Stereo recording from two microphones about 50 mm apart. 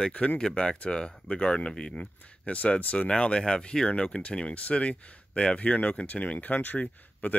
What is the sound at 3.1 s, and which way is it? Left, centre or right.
Speech, centre.